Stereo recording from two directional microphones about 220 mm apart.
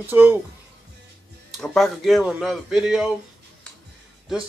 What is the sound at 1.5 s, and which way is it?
Speech, centre (ahead or behind).